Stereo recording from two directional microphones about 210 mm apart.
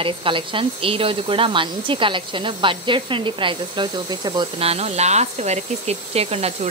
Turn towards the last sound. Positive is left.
turn(degrees=-30)  # may be behind; listen again after turning